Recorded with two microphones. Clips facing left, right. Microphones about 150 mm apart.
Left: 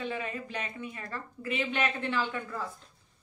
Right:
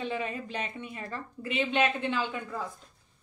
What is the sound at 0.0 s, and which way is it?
A woman's voice, 25° right (ahead or behind).